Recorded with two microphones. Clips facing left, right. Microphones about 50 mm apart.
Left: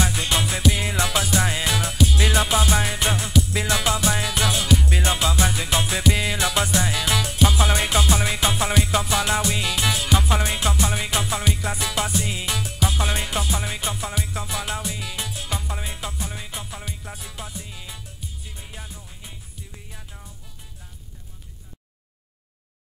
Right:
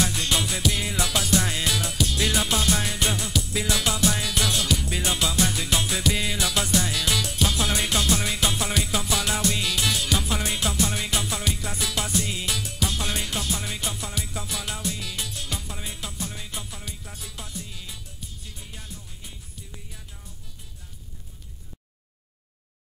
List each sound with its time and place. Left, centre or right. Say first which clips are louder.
0.0 s music: left 2 dB; centre